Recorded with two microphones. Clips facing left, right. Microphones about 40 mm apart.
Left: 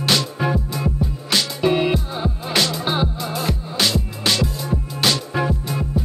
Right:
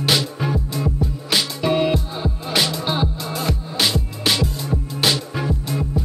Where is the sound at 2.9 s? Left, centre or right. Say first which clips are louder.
Left 1 dB; centre.